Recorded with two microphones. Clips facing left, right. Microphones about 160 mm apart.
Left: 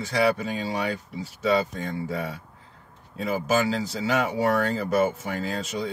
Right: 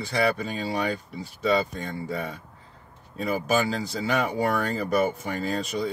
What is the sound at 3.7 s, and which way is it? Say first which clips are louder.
Speech: left 1 dB; 5° left (ahead or behind).